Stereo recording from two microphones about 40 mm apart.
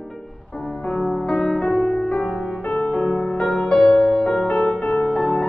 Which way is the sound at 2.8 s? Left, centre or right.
Centre.